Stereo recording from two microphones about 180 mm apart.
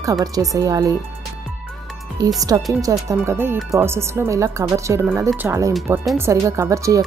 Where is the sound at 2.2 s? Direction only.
20° right (ahead or behind).